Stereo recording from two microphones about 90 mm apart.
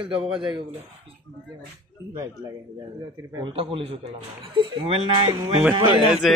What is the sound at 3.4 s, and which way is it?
Speech, 80° right.